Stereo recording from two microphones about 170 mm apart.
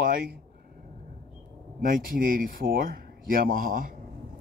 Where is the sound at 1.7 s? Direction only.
55° right (ahead or behind).